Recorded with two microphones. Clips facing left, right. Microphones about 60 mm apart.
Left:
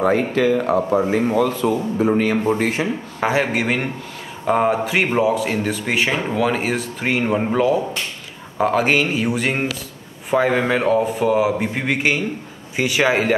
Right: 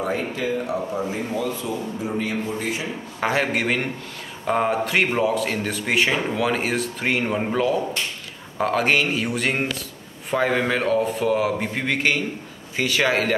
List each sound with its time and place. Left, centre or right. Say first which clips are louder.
0.0 s speech: left 8 dB; left
0.7 s a man's voice: left 7 dB; left
1.0 s a man's voice: left 8 dB; left
3.2 s a man's voice: left 2 dB; centre